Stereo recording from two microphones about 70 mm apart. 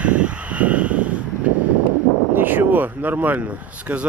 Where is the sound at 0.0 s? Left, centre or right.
Centre.